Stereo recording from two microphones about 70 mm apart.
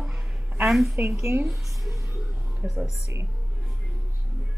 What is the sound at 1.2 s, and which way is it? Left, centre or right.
Speech, right.